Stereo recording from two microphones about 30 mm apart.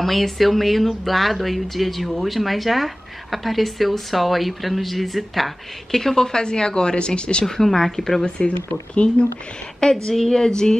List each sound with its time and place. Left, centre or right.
0.0 s speech: centre
5.9 s speech: centre; by 7.4 s left
7.4 s speech: centre
8.4 s speech: left
9.8 s a woman's voice: left